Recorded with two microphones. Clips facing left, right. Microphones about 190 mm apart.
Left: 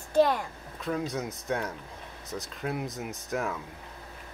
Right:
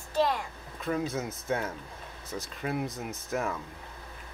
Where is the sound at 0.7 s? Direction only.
Centre (ahead or behind).